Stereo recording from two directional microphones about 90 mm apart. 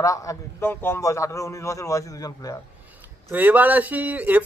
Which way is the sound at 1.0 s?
35° left (ahead or behind).